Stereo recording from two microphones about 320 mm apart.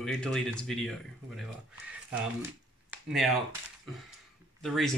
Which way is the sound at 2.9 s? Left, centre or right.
Centre.